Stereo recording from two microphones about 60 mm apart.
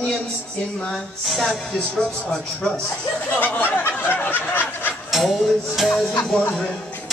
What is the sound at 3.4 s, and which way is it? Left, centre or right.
Snicker, left.